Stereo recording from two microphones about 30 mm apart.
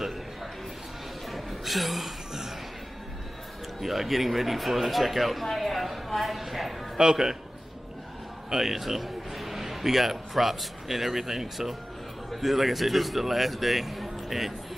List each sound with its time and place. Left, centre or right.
1.3 s a sound: centre
3.8 s speech: centre
7.0 s a man's voice: centre
8.5 s a man's voice: centre